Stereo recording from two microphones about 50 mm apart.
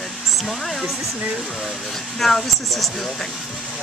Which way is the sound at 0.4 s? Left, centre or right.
Centre.